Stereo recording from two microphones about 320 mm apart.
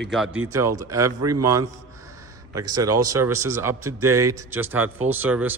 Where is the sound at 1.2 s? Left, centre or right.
Right.